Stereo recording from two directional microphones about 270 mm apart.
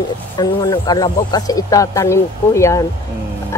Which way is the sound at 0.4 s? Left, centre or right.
Centre.